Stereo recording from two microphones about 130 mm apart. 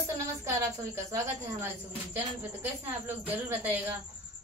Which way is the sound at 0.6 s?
25° right (ahead or behind).